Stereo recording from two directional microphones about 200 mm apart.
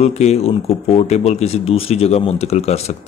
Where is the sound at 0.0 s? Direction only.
30° left (ahead or behind).